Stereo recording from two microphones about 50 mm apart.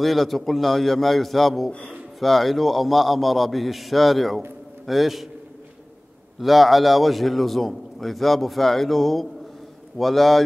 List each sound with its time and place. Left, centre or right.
0.0 s a man's voice: centre
1.7 s speech: left
2.1 s a man's voice: centre
6.4 s a man's voice: centre